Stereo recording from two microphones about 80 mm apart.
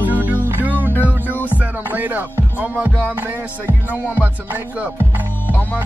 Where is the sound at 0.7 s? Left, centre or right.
Right.